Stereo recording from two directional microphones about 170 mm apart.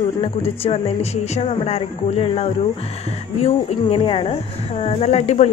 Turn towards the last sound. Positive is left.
turn(degrees=40)  # may be behind; listen again after turning